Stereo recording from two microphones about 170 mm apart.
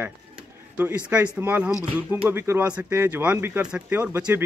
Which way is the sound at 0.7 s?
10° right (ahead or behind).